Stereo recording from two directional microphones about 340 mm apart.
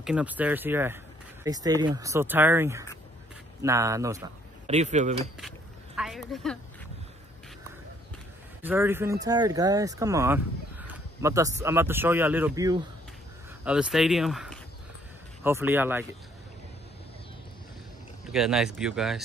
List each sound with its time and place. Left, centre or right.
0.0 s speech: centre
4.6 s speech: centre
5.9 s a woman's voice: centre
8.6 s speech: centre
18.3 s speech: centre